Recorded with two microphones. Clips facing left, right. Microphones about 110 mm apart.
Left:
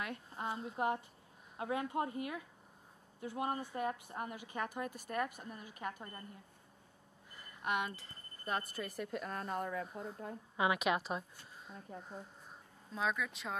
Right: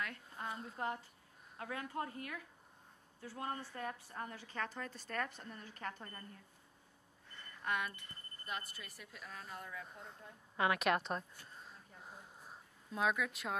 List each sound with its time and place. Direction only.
0.0 s a sound: 20° left (ahead or behind)
0.7 s a woman's voice: 20° left (ahead or behind)
7.6 s a woman's voice: 20° left (ahead or behind)
8.5 s a woman's voice: 45° left (ahead or behind)
10.5 s a woman's voice: 5° left (ahead or behind)